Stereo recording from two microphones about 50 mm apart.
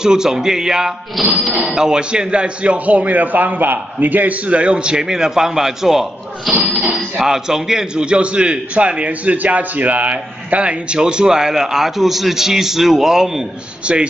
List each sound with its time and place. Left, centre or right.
0.0 s a man's voice: centre
1.2 s speech: centre
1.6 s a man's voice: centre
13.9 s a man's voice: right